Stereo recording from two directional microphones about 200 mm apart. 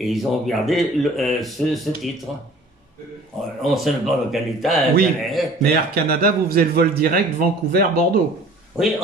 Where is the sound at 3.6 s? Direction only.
Centre (ahead or behind).